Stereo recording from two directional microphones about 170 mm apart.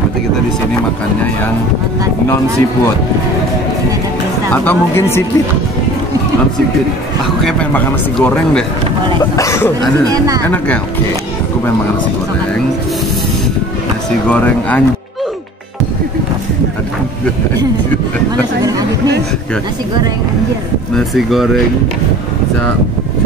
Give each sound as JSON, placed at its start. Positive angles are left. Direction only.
{"t": 4.5, "sound": "speech", "side_deg": 10}
{"t": 7.4, "sound": "speech", "side_deg": 10}
{"t": 10.0, "sound": "speech", "side_deg": -20}
{"t": 10.4, "sound": "speech", "side_deg": 10}
{"t": 14.3, "sound": "speech", "side_deg": 10}
{"t": 18.6, "sound": "speech", "side_deg": -20}
{"t": 20.9, "sound": "speech", "side_deg": 0}